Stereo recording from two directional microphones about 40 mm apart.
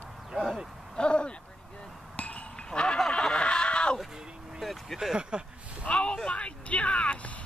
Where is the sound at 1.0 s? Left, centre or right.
Left.